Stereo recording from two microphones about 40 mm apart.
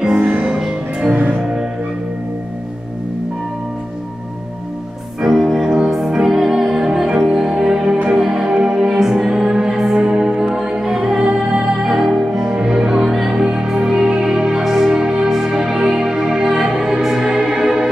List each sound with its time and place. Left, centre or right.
0.2 s music: right
0.5 s music: centre
1.1 s music: right
5.2 s music: centre
17.6 s music: centre